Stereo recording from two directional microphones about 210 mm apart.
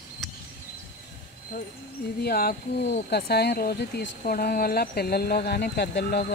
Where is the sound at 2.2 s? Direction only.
45° left (ahead or behind).